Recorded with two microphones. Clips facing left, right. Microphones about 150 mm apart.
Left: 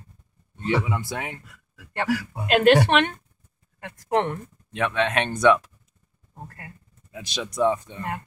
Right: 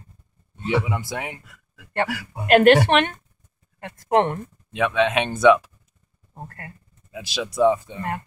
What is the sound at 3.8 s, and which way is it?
Speech, 30° right (ahead or behind).